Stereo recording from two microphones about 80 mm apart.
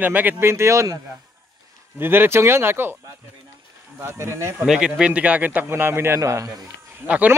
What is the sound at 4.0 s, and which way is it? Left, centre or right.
Speech, right.